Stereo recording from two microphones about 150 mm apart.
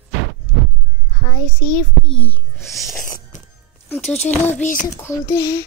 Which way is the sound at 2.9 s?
65° left (ahead or behind).